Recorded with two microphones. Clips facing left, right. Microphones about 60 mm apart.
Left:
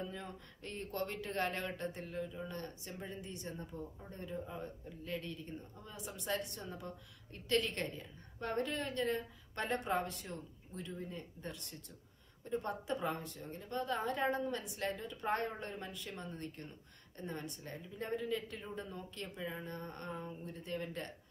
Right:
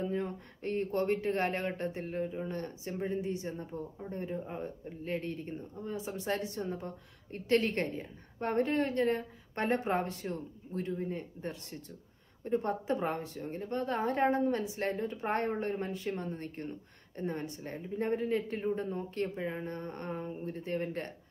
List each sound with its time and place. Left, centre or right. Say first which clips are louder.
0.0 s a sound: right 10 dB; right
1.3 s speech: right 6 dB; right
2.8 s speech: right 11 dB; right
6.2 s speech: right 4 dB; right
6.6 s a woman's voice: right 8 dB; right